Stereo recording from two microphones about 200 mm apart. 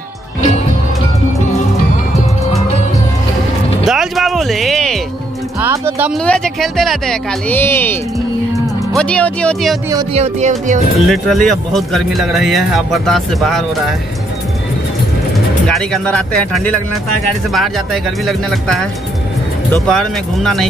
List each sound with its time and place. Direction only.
3.8 s music: centre (ahead or behind)
5.6 s music: 10° right (ahead or behind)
6.1 s speech: 5° left (ahead or behind)
10.1 s speech: 35° right (ahead or behind)
11.0 s speech: centre (ahead or behind)
15.6 s speech: 5° left (ahead or behind)